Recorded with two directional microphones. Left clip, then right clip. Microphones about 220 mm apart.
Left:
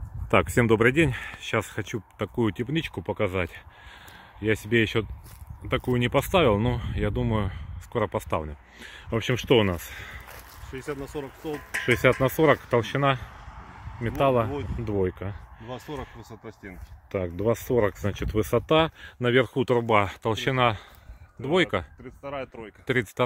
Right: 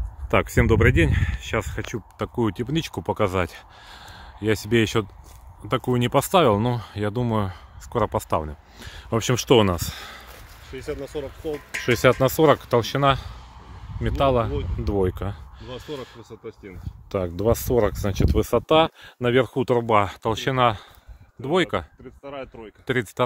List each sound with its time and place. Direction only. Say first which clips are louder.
0.3 s speech: right 1 dB; 5° left (ahead or behind)
2.9 s speech: right 4 dB; 15° right (ahead or behind)
10.7 s speech: right 3 dB; 45° left (ahead or behind)
11.7 s speech: right 3 dB; 10° right (ahead or behind)
15.7 s speech: right 2 dB; 35° left (ahead or behind)
17.1 s speech: right 4 dB; 15° right (ahead or behind)
19.7 s speech: right 3 dB; centre (ahead or behind)
22.2 s speech: left 1 dB; 35° left (ahead or behind)
22.8 s speech: right 2 dB; 15° right (ahead or behind)